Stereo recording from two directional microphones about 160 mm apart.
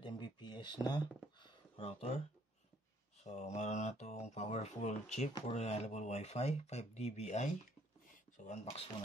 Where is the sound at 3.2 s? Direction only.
45° left (ahead or behind).